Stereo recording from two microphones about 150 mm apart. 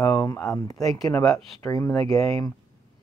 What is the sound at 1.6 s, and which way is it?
Speech, 20° left (ahead or behind).